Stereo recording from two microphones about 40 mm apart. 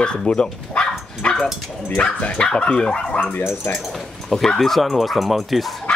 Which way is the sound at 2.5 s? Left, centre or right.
Left.